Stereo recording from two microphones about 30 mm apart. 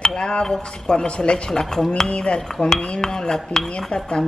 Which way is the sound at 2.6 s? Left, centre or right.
Left.